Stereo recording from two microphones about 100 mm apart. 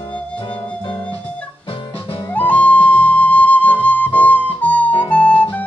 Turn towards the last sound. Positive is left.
turn(degrees=15)  # may be behind; listen again after turning